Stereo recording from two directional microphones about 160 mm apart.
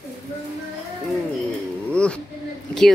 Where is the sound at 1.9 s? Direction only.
5° left (ahead or behind).